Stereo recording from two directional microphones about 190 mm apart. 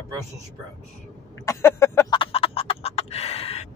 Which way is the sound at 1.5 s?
15° left (ahead or behind).